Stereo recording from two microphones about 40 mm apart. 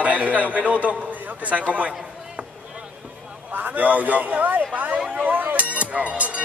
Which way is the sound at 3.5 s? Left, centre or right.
Right.